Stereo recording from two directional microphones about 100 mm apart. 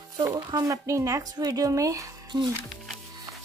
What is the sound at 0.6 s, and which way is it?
A woman's voice, 30° right (ahead or behind).